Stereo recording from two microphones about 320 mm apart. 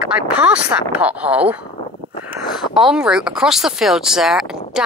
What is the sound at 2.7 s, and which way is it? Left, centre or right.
Speech, centre.